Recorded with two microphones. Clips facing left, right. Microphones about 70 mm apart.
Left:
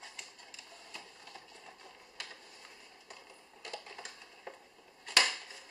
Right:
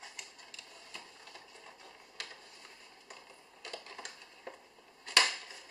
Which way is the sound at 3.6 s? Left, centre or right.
Centre.